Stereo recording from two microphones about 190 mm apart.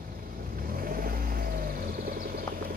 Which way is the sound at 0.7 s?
50° right (ahead or behind).